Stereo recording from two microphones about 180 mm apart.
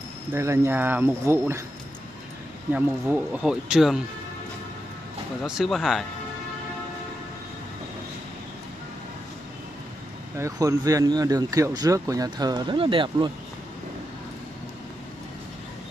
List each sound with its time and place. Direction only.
0.3 s speech: 15° right (ahead or behind)
2.7 s speech: 10° right (ahead or behind)
5.4 s speech: centre (ahead or behind)
10.3 s speech: 15° right (ahead or behind)